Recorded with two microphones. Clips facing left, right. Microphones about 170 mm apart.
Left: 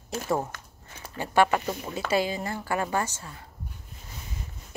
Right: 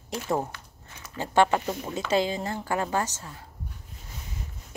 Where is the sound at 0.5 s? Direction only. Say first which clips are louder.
Left 1 dB; 45° left (ahead or behind).